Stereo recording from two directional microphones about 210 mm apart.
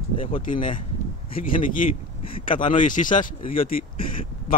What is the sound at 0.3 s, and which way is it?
A man's voice, 40° left (ahead or behind).